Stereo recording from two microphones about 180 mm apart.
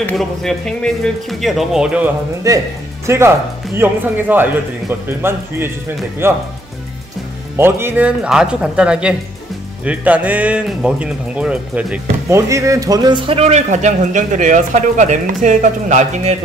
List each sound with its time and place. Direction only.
0.0 s speech: centre (ahead or behind)
2.4 s speech: 20° right (ahead or behind)
7.5 s speech: 15° right (ahead or behind); by 16.3 s 40° right (ahead or behind)